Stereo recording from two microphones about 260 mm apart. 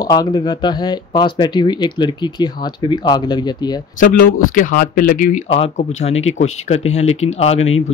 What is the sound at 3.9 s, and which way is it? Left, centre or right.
Speech, left.